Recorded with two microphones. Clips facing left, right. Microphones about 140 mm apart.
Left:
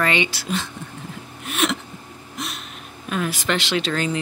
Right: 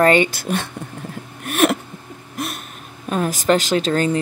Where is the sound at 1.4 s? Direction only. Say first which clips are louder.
Right 6 dB; 55° right (ahead or behind).